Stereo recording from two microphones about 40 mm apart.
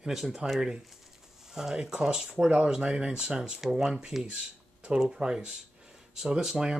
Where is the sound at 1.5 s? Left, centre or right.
Centre.